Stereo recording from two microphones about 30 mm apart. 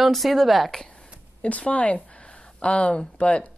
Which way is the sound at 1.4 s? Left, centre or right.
Left.